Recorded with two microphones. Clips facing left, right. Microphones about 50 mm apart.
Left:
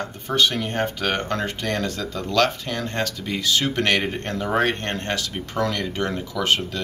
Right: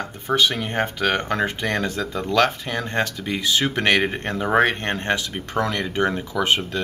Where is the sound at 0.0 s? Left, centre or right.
Centre.